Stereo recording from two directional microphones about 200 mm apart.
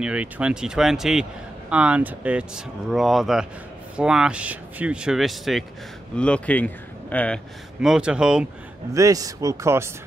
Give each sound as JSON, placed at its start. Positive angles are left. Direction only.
{"t": 0.0, "sound": "speech", "side_deg": -5}
{"t": 7.8, "sound": "speech", "side_deg": -5}
{"t": 8.9, "sound": "speech", "side_deg": -15}